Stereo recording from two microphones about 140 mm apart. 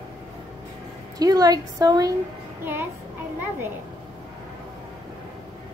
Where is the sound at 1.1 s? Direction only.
25° right (ahead or behind).